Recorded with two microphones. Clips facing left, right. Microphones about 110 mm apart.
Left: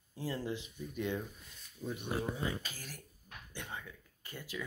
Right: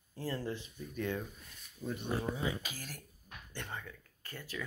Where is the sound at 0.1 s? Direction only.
10° left (ahead or behind).